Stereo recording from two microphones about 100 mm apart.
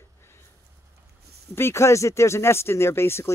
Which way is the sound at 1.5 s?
25° left (ahead or behind).